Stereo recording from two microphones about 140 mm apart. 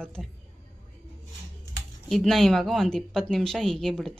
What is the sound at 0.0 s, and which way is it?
Speech, 5° left (ahead or behind).